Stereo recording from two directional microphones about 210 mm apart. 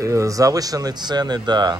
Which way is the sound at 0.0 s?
15° right (ahead or behind).